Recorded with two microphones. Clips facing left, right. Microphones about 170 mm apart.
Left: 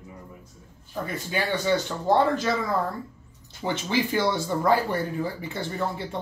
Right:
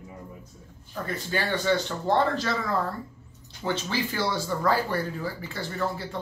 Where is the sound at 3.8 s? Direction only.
20° left (ahead or behind).